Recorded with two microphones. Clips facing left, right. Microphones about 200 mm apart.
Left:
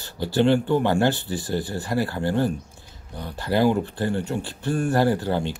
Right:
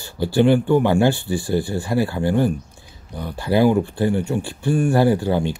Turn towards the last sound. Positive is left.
turn(degrees=-15)  # may be behind; listen again after turning